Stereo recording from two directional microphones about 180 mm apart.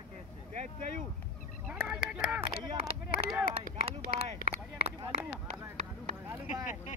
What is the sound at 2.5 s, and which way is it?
Speech, 30° right (ahead or behind).